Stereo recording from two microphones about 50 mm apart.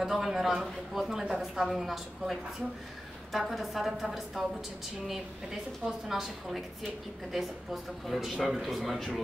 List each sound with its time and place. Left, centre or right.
0.0 s a woman's voice: centre